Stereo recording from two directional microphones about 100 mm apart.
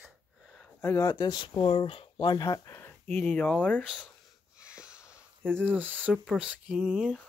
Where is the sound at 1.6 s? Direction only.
65° left (ahead or behind).